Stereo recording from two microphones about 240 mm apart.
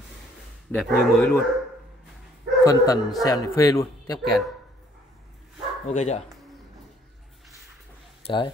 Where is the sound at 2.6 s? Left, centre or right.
Centre.